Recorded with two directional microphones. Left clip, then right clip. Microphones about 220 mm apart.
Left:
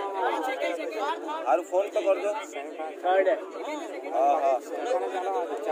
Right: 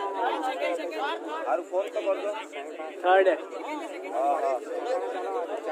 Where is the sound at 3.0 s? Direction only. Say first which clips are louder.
Right 2 dB; 20° right (ahead or behind).